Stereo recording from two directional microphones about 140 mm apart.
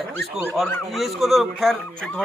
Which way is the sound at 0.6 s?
Centre (ahead or behind).